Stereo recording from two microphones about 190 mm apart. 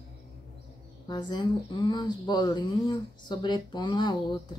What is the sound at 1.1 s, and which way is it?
Speech, 20° left (ahead or behind).